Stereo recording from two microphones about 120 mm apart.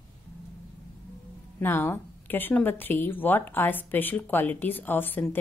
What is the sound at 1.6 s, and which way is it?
Speech, 15° left (ahead or behind).